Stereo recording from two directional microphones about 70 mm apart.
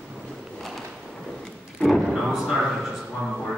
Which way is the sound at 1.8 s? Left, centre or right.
Centre.